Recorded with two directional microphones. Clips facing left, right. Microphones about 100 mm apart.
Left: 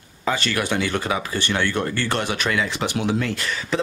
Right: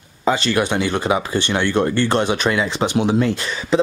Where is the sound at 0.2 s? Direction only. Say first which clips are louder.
Right 5 dB; 25° right (ahead or behind).